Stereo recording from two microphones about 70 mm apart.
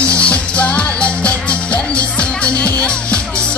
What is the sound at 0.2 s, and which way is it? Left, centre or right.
Music, centre.